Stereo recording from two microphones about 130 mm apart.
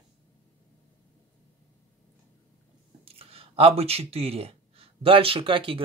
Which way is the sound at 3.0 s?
50° right (ahead or behind).